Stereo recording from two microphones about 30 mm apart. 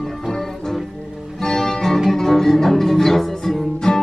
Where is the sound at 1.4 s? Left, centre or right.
Centre.